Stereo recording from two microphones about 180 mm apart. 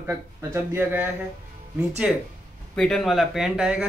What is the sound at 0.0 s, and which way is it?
A man's voice, 15° right (ahead or behind).